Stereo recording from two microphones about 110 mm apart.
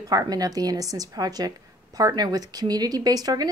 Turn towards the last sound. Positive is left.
turn(degrees=-35)  # may be behind; listen again after turning